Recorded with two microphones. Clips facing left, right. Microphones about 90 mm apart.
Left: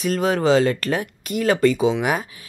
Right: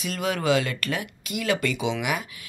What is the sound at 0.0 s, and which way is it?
A woman's voice, 40° left (ahead or behind).